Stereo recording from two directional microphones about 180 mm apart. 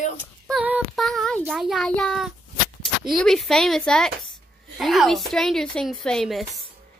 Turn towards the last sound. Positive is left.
turn(degrees=0)  # may be behind; listen again after turning